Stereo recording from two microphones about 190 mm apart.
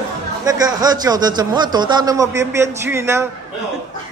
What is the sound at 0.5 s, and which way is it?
A man's voice, 20° right (ahead or behind).